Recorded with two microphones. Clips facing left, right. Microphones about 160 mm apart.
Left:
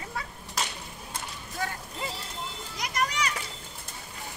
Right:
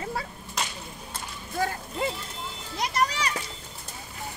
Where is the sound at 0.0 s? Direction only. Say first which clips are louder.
Right 5 dB; 30° right (ahead or behind).